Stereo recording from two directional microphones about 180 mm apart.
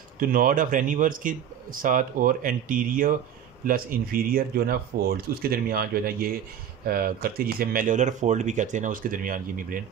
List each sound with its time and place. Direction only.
0.2 s speech: 50° right (ahead or behind)